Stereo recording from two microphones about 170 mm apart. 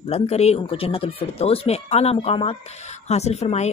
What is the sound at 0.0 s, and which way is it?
Speech, 35° left (ahead or behind).